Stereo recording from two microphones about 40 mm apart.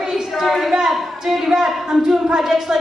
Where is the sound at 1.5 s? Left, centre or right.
Centre.